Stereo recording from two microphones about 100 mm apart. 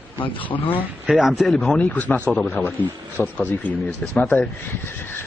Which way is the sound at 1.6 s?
15° left (ahead or behind).